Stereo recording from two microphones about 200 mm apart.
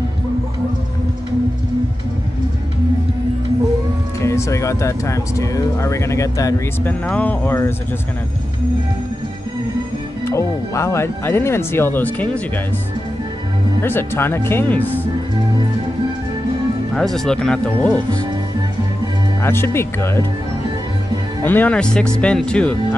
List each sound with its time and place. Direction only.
4.2 s speech: 15° left (ahead or behind)
10.2 s speech: 15° left (ahead or behind)
13.8 s speech: 10° left (ahead or behind)
16.9 s speech: centre (ahead or behind)
19.4 s speech: 10° left (ahead or behind)
21.5 s speech: 10° left (ahead or behind)